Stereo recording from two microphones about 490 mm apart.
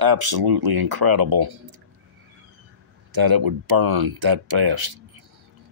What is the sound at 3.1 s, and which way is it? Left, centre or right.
Speech, right.